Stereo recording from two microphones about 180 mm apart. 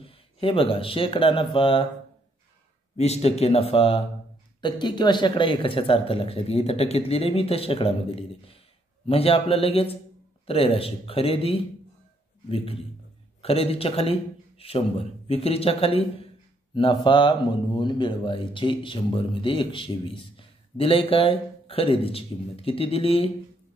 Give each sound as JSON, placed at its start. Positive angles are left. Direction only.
{"t": 0.0, "sound": "speech", "side_deg": 30}
{"t": 3.0, "sound": "a man's voice", "side_deg": 35}